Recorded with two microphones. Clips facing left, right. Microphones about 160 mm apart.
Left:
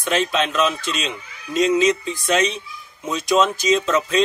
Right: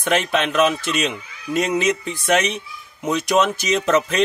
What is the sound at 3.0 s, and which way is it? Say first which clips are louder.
Speech: even; 65° right (ahead or behind).